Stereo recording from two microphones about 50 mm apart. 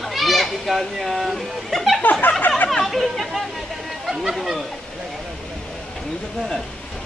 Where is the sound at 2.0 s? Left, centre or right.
Left.